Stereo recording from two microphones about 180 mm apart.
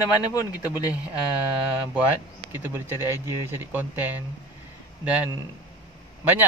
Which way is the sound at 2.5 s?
10° right (ahead or behind).